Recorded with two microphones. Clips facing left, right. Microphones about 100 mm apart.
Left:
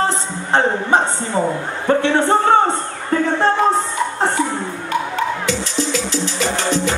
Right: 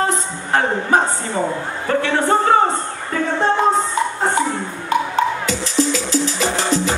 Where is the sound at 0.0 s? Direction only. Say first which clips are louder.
Left 1 dB; 30° left (ahead or behind).